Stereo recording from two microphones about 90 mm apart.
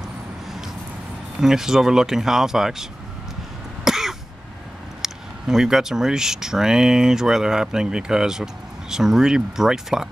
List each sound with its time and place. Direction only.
1.4 s speech: 5° right (ahead or behind)
3.8 s throat clearing: 5° right (ahead or behind)
5.0 s speech: 5° right (ahead or behind)